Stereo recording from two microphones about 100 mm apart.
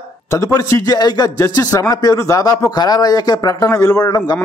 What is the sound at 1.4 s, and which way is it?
Speech, 30° left (ahead or behind).